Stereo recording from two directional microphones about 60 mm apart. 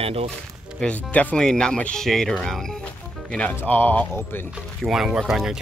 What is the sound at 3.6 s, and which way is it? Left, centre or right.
Speech, left.